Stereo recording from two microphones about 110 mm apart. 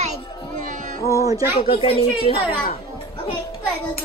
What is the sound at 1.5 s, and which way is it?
Speech, 60° left (ahead or behind).